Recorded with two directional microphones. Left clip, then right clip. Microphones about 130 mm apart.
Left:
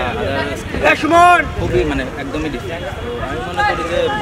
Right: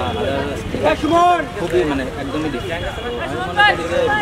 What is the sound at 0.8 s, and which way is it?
Speech, 35° left (ahead or behind).